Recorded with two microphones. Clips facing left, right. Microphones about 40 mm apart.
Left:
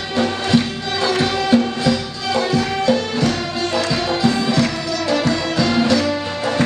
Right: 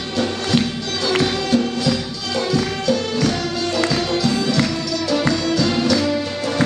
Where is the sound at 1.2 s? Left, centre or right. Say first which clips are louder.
Left 2 dB; centre.